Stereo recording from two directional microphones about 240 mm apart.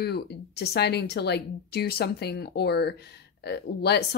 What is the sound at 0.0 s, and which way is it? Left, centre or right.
Speech, left.